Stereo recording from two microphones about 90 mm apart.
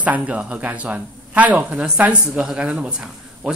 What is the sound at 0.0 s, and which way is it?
Speech, 15° right (ahead or behind).